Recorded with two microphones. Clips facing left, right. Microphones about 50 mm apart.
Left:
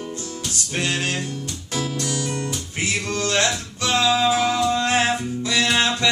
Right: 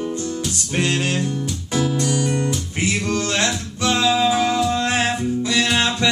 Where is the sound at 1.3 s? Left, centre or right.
Centre.